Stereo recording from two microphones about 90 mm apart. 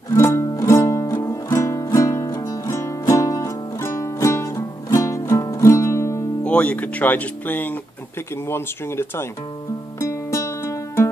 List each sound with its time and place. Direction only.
0.1 s music: 30° left (ahead or behind)
2.2 s music: 55° left (ahead or behind)
2.6 s music: 35° left (ahead or behind)
6.4 s speech: 15° left (ahead or behind)
9.9 s music: 35° left (ahead or behind)